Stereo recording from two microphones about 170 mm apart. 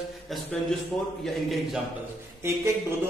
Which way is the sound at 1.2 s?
Centre (ahead or behind).